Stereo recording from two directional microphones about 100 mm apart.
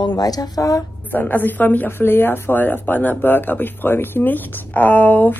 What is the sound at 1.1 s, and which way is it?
Speech, 20° left (ahead or behind).